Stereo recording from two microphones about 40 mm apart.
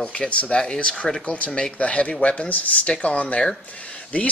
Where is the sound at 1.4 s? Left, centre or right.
Left.